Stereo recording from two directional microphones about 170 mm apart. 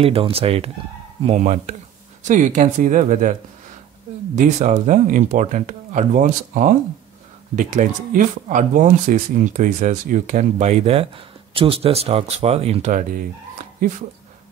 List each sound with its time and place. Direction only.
0.0 s speech: 35° right (ahead or behind)
4.4 s speech: 45° right (ahead or behind)